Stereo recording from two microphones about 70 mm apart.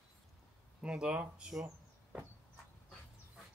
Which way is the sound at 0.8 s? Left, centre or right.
Centre.